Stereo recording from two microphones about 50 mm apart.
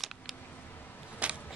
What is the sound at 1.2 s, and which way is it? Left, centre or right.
Vehicle, right.